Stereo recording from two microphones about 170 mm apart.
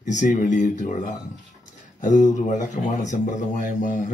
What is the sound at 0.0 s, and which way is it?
A man's voice, 45° left (ahead or behind).